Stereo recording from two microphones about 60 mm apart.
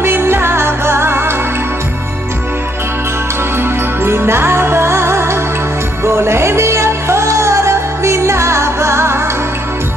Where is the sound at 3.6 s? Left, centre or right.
Right.